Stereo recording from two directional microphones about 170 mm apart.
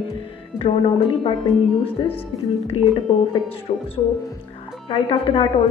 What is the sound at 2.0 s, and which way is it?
Speech, 30° left (ahead or behind).